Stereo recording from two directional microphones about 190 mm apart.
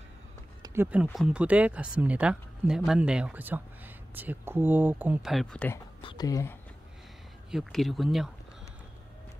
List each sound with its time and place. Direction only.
0.6 s a sound: 10° right (ahead or behind)
1.1 s speech: 5° right (ahead or behind)
5.9 s speech: 25° left (ahead or behind)
7.5 s speech: centre (ahead or behind)